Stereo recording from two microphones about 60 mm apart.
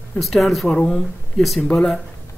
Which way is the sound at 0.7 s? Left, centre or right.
Centre.